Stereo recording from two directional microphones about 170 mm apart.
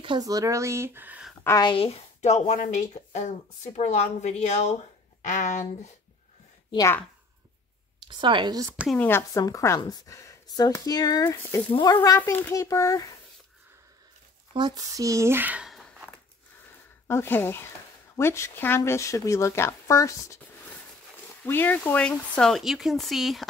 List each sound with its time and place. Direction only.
0.0 s speech: 25° right (ahead or behind); by 1.3 s 10° right (ahead or behind)
1.4 s speech: 15° left (ahead or behind)
1.7 s speech: 35° left (ahead or behind)
6.7 s a woman's voice: 20° left (ahead or behind)
8.1 s speech: 30° right (ahead or behind)
8.9 s a woman's voice: 10° left (ahead or behind)
14.5 s speech: 25° right (ahead or behind); by 16.2 s centre (ahead or behind)
17.1 s speech: 15° left (ahead or behind)
21.5 s speech: 10° left (ahead or behind)